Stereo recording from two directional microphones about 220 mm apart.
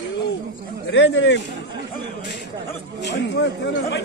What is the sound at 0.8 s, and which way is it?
Speech, 55° left (ahead or behind).